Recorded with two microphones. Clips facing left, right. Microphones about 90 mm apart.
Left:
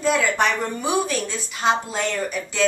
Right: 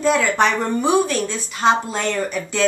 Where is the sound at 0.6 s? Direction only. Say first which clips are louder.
Right 5 dB; 25° right (ahead or behind).